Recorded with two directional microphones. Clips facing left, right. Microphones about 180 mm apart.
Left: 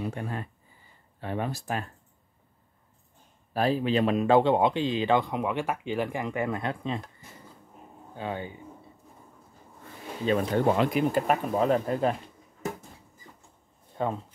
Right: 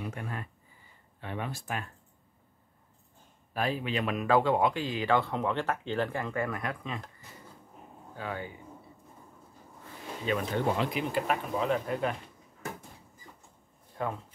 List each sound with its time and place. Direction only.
0.0 s speech: 30° left (ahead or behind)
3.5 s speech: 35° left (ahead or behind)
8.2 s speech: 25° left (ahead or behind)
10.2 s speech: 35° left (ahead or behind)
10.5 s speech: 45° left (ahead or behind)
14.0 s speech: 25° left (ahead or behind)